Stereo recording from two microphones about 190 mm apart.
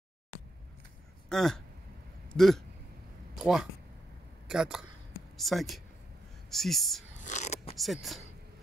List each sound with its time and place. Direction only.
1.3 s speech: 5° left (ahead or behind)
7.2 s a sound: 40° left (ahead or behind)
7.7 s speech: centre (ahead or behind)